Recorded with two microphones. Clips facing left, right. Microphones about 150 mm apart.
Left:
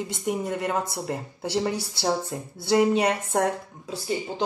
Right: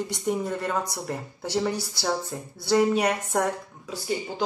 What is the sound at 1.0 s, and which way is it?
Speech, 25° left (ahead or behind).